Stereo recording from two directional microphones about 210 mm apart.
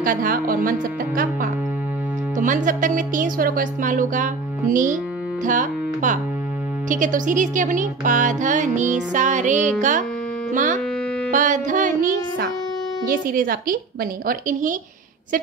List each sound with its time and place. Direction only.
0.0 s music: 40° right (ahead or behind)
10.5 s speech: 40° right (ahead or behind)
11.3 s music: 40° right (ahead or behind)
13.0 s speech: 40° right (ahead or behind)
14.2 s music: 40° right (ahead or behind)